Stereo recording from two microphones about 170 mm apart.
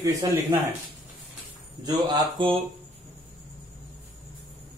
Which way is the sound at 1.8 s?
25° right (ahead or behind).